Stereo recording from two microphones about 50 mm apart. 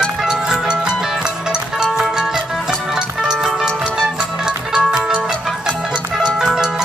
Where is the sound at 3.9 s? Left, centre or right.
Centre.